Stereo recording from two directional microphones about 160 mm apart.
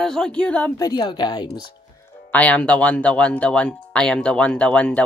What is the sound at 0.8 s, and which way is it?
Speech, 25° left (ahead or behind).